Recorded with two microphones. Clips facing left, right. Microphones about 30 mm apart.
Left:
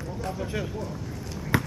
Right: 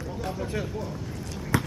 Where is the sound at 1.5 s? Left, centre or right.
Left.